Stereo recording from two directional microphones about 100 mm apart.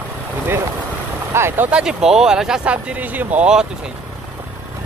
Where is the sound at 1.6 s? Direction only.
10° right (ahead or behind).